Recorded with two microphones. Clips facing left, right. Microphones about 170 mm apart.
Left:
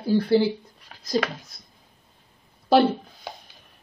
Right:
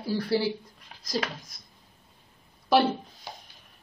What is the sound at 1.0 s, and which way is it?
Speech, 80° left.